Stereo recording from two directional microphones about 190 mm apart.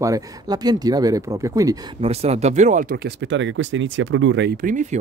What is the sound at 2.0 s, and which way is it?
Speech, 30° right (ahead or behind).